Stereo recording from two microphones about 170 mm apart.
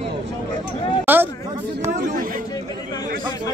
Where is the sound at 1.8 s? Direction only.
50° right (ahead or behind).